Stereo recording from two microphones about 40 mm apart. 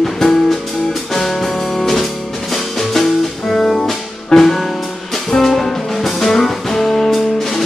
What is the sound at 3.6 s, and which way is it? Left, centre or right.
Music, centre.